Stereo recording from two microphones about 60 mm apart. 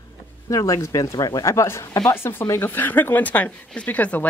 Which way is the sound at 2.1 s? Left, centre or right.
Left.